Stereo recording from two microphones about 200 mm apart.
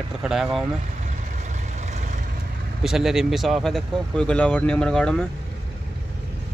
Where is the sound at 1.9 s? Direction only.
35° right (ahead or behind).